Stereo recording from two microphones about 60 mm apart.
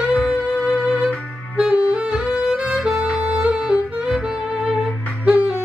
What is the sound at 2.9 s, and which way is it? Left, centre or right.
Music, right.